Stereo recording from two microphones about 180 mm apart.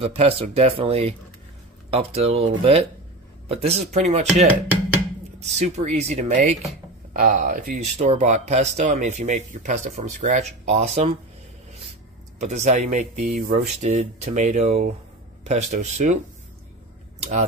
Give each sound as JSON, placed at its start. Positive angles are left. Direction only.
{"t": 0.0, "sound": "speech", "side_deg": -35}
{"t": 3.9, "sound": "speech", "side_deg": -35}
{"t": 12.4, "sound": "speech", "side_deg": -40}
{"t": 13.7, "sound": "speech", "side_deg": -40}
{"t": 17.2, "sound": "speech", "side_deg": -40}